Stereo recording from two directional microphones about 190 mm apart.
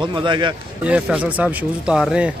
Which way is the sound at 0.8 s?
5° right (ahead or behind).